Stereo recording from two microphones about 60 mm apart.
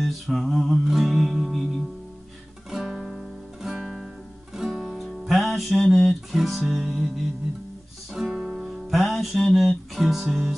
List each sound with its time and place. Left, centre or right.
0.0 s music: centre
8.1 s music: centre